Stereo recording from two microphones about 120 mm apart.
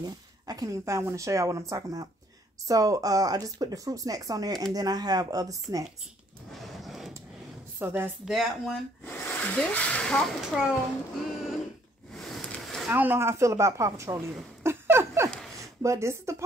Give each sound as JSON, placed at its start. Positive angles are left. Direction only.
{"t": 0.0, "sound": "speech", "side_deg": -30}
{"t": 6.5, "sound": "a sound", "side_deg": 0}
{"t": 7.8, "sound": "speech", "side_deg": -20}
{"t": 8.3, "sound": "speech", "side_deg": 0}
{"t": 9.0, "sound": "speech", "side_deg": 20}
{"t": 12.1, "sound": "a sound", "side_deg": 0}
{"t": 12.9, "sound": "a woman's voice", "side_deg": -15}